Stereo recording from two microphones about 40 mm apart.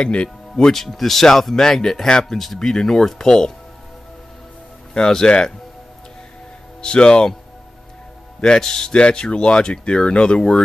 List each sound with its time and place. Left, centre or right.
0.0 s speech: left
0.6 s speech: centre
0.8 s speech: centre
2.3 s speech: centre
5.0 s speech: centre
6.8 s speech: left
8.4 s speech: centre